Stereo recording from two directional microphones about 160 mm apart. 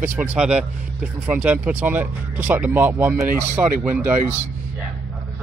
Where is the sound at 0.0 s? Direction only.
15° right (ahead or behind).